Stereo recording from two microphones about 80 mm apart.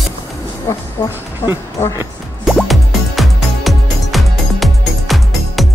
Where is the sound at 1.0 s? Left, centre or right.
Left.